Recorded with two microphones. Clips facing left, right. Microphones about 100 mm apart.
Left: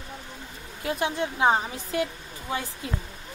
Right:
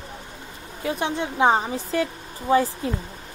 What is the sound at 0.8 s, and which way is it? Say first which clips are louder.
A woman's voice: right 2 dB; 25° right (ahead or behind).